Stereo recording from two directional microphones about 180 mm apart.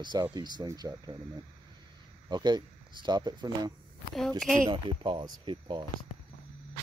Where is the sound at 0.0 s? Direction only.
25° right (ahead or behind).